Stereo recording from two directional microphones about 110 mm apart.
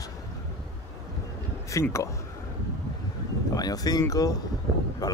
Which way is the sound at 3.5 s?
35° left (ahead or behind).